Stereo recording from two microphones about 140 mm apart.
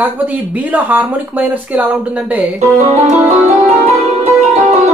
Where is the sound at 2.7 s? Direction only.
50° right (ahead or behind).